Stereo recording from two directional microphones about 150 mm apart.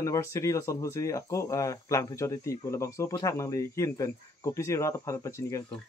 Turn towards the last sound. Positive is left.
turn(degrees=20)  # may be behind; listen again after turning